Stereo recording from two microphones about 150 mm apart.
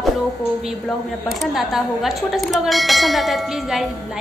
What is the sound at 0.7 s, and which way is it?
A woman's voice, centre (ahead or behind).